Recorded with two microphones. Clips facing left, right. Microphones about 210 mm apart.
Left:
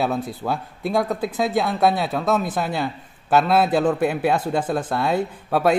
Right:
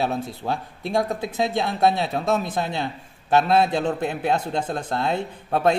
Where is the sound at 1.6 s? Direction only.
25° right (ahead or behind).